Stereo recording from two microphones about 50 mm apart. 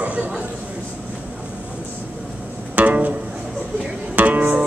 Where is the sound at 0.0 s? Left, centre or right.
Right.